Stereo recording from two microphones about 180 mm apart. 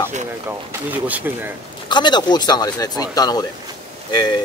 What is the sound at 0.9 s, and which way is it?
Speech, 10° right (ahead or behind).